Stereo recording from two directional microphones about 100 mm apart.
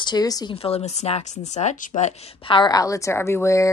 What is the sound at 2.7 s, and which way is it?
Speech, 35° left (ahead or behind).